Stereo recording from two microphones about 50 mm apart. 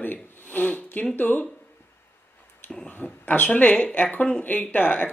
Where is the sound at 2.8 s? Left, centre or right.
Left.